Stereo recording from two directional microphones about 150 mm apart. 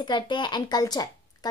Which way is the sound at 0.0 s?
30° left (ahead or behind).